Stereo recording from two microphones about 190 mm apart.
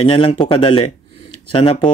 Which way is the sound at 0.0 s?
30° left (ahead or behind).